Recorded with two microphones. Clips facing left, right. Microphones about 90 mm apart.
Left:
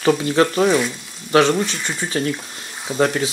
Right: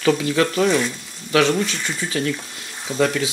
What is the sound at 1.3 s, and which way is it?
Speech, 25° left (ahead or behind).